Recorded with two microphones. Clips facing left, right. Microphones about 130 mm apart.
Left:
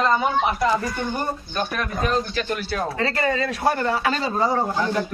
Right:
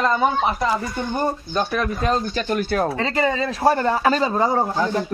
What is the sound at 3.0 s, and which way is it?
Speech, 20° right (ahead or behind).